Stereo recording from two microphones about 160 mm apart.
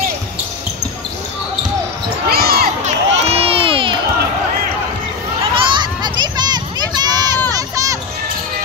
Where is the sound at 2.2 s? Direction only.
75° right (ahead or behind).